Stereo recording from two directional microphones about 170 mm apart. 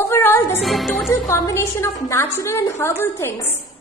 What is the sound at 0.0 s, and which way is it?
Music, 15° left (ahead or behind).